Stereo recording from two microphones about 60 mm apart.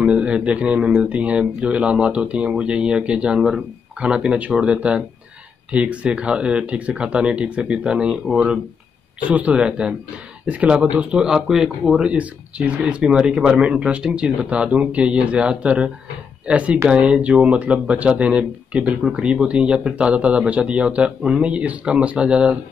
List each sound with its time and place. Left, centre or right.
0.0 s speech: centre
9.2 s speech: right; by 12.0 s centre
12.0 s speech: centre